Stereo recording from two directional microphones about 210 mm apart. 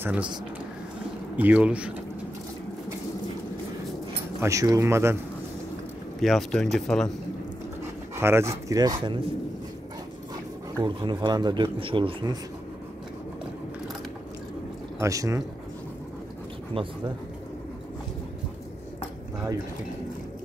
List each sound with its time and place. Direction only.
0.0 s speech: 5° right (ahead or behind)
1.3 s speech: 5° right (ahead or behind)
4.4 s speech: 15° right (ahead or behind)
6.2 s speech: centre (ahead or behind)
7.8 s speech: 10° right (ahead or behind)
10.8 s speech: 20° right (ahead or behind)
15.0 s speech: 15° right (ahead or behind)
16.8 s speech: 25° right (ahead or behind)